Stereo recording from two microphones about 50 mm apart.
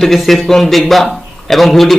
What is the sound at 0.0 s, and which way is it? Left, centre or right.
Speech, centre.